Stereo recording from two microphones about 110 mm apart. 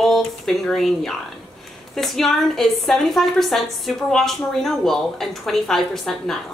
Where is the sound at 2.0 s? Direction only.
Centre (ahead or behind).